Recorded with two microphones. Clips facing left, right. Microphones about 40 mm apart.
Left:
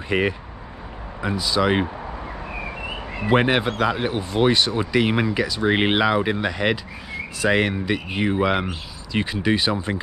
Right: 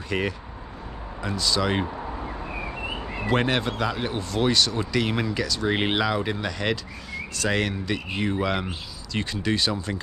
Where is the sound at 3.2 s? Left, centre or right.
Centre.